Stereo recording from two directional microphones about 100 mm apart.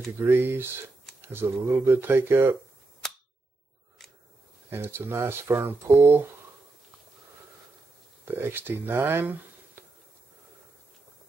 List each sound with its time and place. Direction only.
0.3 s speech: 20° right (ahead or behind)
4.6 s speech: 25° right (ahead or behind)
8.3 s speech: 20° right (ahead or behind)